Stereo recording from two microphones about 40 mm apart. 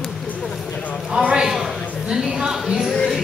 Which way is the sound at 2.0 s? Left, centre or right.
Centre.